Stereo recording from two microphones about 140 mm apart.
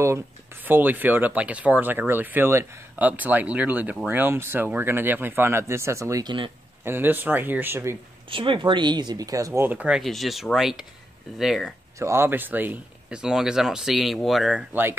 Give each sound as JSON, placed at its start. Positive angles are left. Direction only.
{"t": 0.0, "sound": "speech", "side_deg": -20}
{"t": 8.3, "sound": "speech", "side_deg": -35}
{"t": 12.0, "sound": "speech", "side_deg": -20}